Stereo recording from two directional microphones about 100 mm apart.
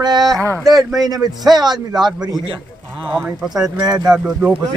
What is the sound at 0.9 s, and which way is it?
Speech, 40° right (ahead or behind).